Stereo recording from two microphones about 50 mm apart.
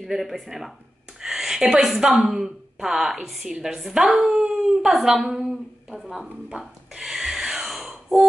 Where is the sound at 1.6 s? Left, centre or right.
Centre.